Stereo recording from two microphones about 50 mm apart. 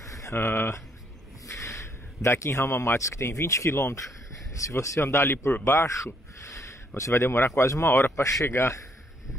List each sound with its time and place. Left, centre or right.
0.0 s a sound: left
1.4 s speech: left
4.6 s speech: left
5.0 s speech: left
5.6 s speech: left
7.2 s speech: left